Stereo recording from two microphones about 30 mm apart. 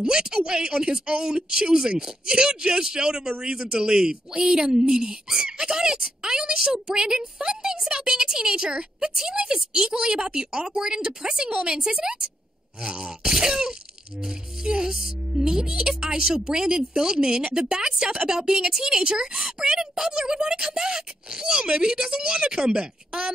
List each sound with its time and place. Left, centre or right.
0.0 s speech: right